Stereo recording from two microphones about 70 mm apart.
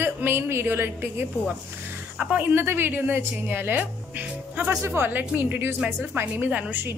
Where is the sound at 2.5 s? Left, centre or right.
Right.